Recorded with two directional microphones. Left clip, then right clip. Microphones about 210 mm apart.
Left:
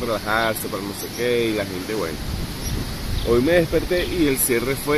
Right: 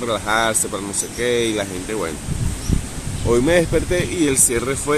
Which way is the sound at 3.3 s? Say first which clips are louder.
Right 2 dB; 20° right (ahead or behind).